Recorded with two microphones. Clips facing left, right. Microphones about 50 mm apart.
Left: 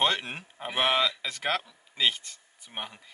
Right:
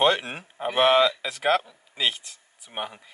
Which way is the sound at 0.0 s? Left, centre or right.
Centre.